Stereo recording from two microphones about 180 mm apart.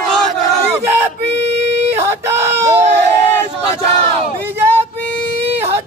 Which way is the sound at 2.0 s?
15° right (ahead or behind).